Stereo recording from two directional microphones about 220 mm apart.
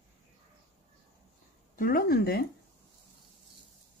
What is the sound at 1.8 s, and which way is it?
Speech, 40° left (ahead or behind).